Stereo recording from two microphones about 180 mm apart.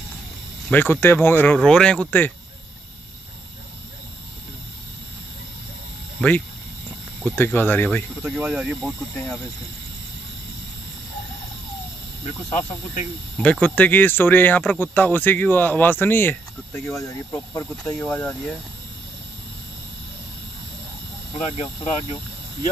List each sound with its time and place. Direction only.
0.7 s speech: 10° left (ahead or behind)
7.2 s speech: 10° left (ahead or behind)
8.2 s speech: 5° right (ahead or behind)
13.4 s speech: 5° left (ahead or behind)
21.5 s speech: 30° left (ahead or behind)